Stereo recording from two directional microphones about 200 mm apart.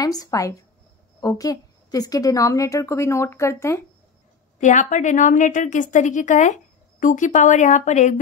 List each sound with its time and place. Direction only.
0.0 s a woman's voice: 20° left (ahead or behind)
4.6 s a woman's voice: 40° left (ahead or behind)